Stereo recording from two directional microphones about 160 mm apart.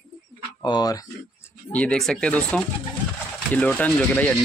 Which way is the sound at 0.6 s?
25° left (ahead or behind).